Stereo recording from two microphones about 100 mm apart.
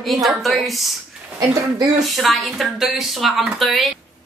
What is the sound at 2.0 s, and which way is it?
Speech, centre (ahead or behind).